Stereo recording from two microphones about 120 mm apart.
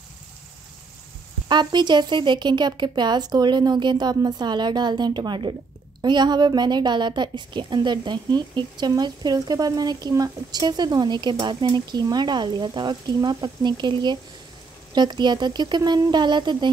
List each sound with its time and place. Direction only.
1.5 s a woman's voice: 40° right (ahead or behind)